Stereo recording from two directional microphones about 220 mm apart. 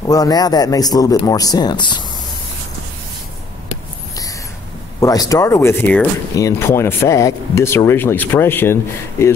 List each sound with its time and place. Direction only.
0.0 s speech: 15° left (ahead or behind)
5.0 s speech: 15° left (ahead or behind)